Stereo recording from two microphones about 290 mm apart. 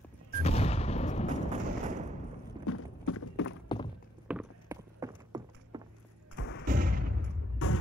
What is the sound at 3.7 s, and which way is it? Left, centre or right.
Thunk, centre.